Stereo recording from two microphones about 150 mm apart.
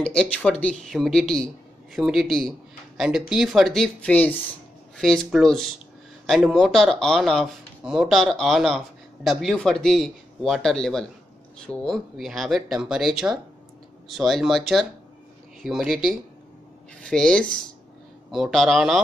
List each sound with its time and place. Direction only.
0.0 s speech: 5° left (ahead or behind)